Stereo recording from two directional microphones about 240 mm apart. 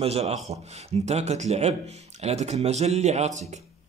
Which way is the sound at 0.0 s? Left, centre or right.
Right.